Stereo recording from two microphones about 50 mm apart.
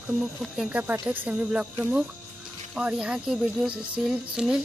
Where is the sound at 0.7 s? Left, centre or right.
Right.